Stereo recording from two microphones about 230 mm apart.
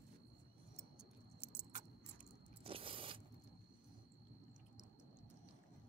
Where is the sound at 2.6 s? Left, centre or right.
Right.